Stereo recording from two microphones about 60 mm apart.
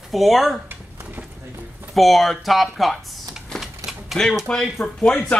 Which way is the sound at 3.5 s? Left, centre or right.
Centre.